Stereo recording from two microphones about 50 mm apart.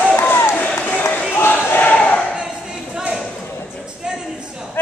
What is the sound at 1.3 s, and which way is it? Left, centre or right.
Battle cry, left.